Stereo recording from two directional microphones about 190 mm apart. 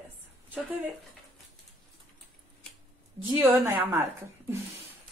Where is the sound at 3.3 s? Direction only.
15° right (ahead or behind).